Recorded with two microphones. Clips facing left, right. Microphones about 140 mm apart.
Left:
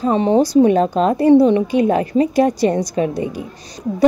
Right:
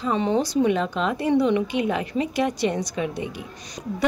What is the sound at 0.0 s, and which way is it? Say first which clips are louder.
A woman's voice: left 8 dB; 35° left (ahead or behind).